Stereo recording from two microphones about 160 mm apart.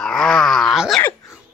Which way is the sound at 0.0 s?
5° left (ahead or behind).